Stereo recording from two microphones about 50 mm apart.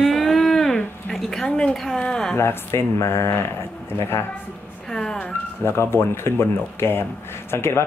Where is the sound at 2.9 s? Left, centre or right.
Left.